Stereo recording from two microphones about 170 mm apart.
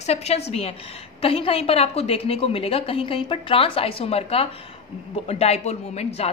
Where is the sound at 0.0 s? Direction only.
40° left (ahead or behind).